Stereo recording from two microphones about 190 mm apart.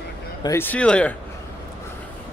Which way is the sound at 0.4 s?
15° left (ahead or behind).